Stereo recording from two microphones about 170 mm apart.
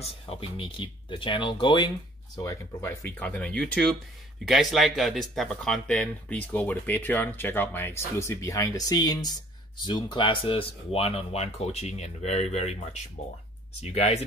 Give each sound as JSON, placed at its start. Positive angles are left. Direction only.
{"t": 0.0, "sound": "speech", "side_deg": 35}